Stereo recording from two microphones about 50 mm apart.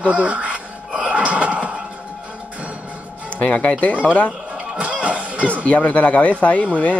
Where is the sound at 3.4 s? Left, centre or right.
Left.